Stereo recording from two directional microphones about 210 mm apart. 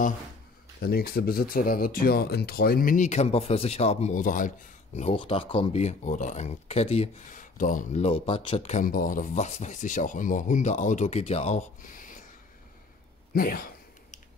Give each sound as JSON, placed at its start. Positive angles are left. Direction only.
{"t": 0.7, "sound": "speech", "side_deg": 45}
{"t": 13.3, "sound": "speech", "side_deg": 45}